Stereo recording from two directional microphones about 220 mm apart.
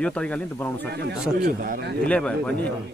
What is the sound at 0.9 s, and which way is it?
A man's voice, 50° right (ahead or behind).